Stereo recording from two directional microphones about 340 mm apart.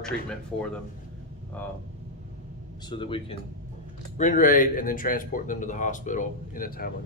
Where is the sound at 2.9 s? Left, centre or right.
Centre.